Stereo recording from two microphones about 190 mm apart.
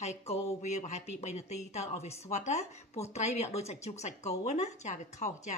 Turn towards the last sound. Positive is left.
turn(degrees=40)  # may be behind; listen again after turning